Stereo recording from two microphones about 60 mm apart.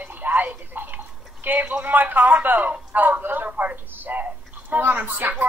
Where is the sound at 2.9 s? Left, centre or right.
Right.